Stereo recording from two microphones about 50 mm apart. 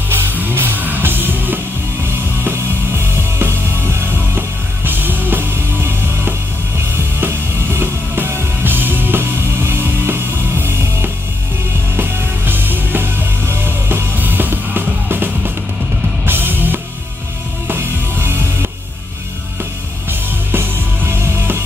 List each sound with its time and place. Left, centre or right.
0.1 s music: right
2.0 s music: right
12.0 s music: right
20.1 s music: right